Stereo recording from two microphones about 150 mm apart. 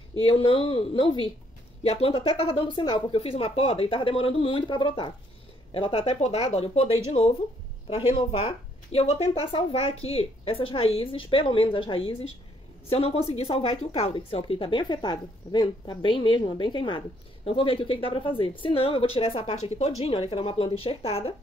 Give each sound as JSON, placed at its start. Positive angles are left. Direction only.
{"t": 0.2, "sound": "speech", "side_deg": 40}